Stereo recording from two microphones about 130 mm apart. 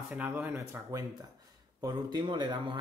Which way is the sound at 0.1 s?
15° right (ahead or behind).